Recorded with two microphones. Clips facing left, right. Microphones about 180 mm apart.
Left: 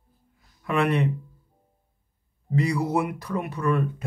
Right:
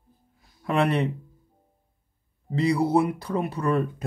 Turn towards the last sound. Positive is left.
turn(degrees=-35)  # may be behind; listen again after turning